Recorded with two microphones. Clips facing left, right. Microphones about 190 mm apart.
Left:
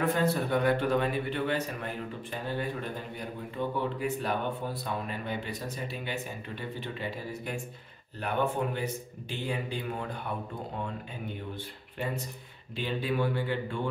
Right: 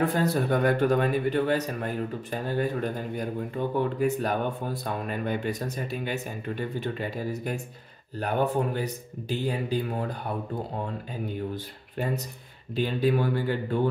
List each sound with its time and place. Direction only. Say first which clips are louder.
0.0 s a man's voice: right 3 dB; 35° right (ahead or behind)
12.7 s a man's voice: right 6 dB; 40° right (ahead or behind)